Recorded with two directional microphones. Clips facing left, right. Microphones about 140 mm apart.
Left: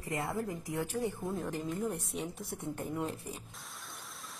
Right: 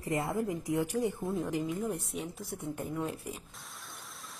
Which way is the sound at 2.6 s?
10° right (ahead or behind).